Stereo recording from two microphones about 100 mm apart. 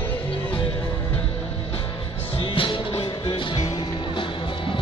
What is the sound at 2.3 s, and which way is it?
Music, 60° left (ahead or behind).